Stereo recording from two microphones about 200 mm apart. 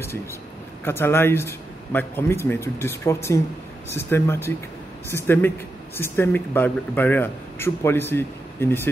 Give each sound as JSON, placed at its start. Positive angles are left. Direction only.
{"t": 0.8, "sound": "speech", "side_deg": 10}